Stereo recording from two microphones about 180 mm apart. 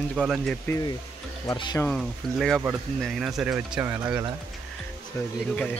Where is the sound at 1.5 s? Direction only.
20° left (ahead or behind).